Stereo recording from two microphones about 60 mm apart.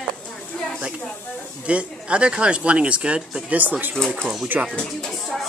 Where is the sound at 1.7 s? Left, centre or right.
Centre.